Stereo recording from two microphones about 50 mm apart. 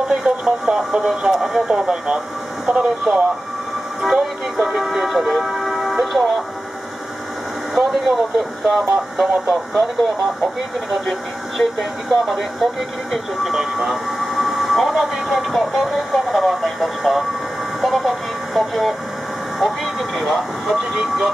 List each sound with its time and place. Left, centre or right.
0.1 s speech: centre
4.0 s speech: centre
7.7 s speech: centre
9.5 s speech: centre
17.7 s a sound: centre
19.6 s speech: centre